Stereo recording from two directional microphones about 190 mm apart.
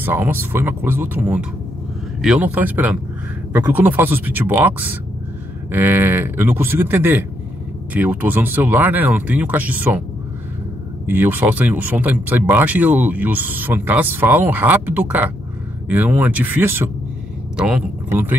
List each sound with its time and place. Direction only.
0.0 s speech: 10° right (ahead or behind)
11.1 s speech: 10° right (ahead or behind)